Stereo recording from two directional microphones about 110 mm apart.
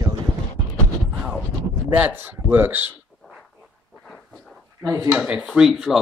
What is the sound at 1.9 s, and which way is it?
A man's voice, 15° right (ahead or behind).